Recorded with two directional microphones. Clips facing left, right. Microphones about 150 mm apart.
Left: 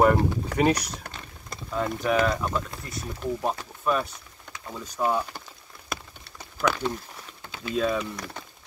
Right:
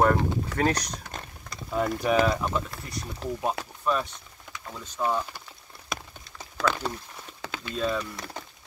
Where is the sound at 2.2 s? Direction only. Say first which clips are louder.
Even; 5° right (ahead or behind); by 5.2 s 10° left (ahead or behind).